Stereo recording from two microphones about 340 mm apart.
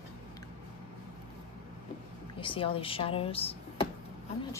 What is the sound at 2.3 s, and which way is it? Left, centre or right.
Speech, centre.